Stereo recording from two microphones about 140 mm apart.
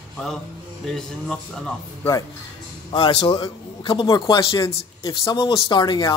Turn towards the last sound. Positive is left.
turn(degrees=30)  # may be behind; listen again after turning